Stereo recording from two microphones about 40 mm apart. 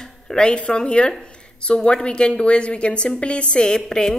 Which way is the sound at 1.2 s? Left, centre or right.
Left.